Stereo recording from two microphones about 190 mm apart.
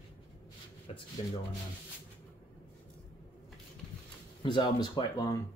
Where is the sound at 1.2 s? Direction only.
30° left (ahead or behind).